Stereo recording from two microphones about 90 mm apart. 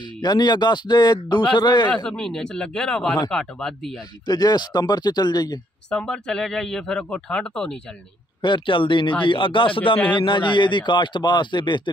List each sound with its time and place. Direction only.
0.2 s a man's voice: 55° left (ahead or behind)
2.0 s speech: 10° left (ahead or behind)
4.3 s speech: 45° left (ahead or behind)
5.9 s speech: 10° left (ahead or behind)
8.4 s a man's voice: 60° left (ahead or behind)
10.0 s a man's voice: 60° left (ahead or behind)